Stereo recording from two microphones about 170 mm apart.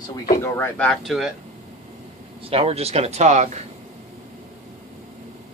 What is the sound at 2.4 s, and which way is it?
Speech, 35° right (ahead or behind).